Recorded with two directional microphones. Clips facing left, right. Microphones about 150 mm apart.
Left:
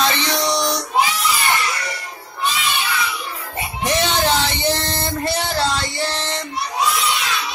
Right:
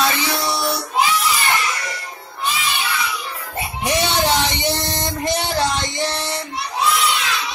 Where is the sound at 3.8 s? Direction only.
15° right (ahead or behind).